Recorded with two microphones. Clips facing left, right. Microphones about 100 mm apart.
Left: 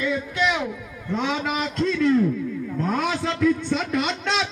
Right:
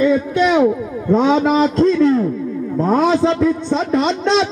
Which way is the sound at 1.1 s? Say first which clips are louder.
Right 11 dB; 30° right (ahead or behind).